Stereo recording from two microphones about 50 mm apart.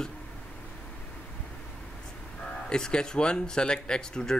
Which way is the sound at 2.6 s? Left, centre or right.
Centre.